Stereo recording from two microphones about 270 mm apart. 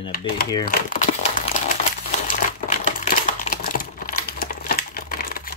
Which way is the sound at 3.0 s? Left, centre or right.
Left.